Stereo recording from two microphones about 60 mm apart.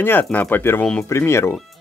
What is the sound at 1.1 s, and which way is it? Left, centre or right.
Speech, left.